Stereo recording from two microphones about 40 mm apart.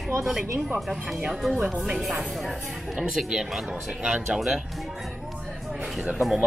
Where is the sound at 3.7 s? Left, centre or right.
Right.